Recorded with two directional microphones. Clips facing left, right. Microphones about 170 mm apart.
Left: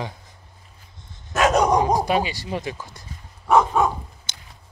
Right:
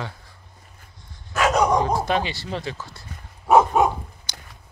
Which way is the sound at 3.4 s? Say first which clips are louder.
Right 2 dB; 20° right (ahead or behind).